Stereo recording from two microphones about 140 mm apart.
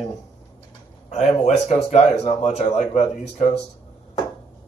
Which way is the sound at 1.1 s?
55° left (ahead or behind).